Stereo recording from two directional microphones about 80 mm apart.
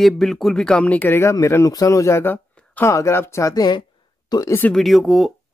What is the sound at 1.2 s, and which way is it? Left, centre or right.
Speech, left.